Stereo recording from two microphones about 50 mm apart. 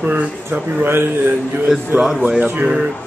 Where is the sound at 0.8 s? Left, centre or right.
Right.